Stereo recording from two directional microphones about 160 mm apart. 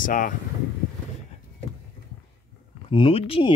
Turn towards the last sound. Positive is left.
turn(degrees=35)  # may be behind; listen again after turning